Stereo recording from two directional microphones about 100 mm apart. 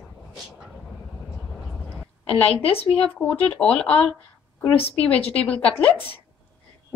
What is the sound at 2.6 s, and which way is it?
Speech, 75° left (ahead or behind).